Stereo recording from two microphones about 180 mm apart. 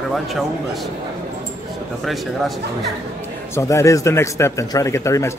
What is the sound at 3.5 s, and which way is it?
A man's voice, 15° left (ahead or behind).